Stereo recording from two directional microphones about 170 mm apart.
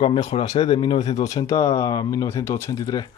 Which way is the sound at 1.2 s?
20° left (ahead or behind).